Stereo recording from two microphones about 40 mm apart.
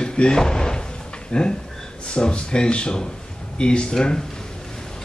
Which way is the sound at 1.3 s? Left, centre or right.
Left.